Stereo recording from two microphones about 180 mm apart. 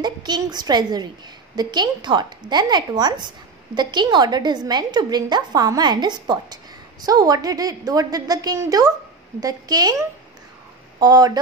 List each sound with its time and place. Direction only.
0.0 s a woman's voice: 25° right (ahead or behind)